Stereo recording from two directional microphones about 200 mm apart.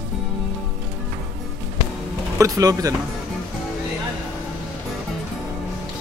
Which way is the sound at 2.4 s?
15° right (ahead or behind).